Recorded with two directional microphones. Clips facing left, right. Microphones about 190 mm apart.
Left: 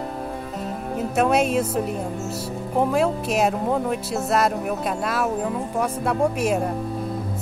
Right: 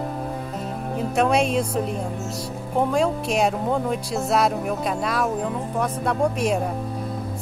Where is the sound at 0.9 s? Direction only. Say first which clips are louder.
Even; 5° left (ahead or behind).